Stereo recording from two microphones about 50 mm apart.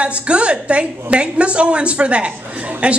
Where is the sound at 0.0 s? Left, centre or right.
Right.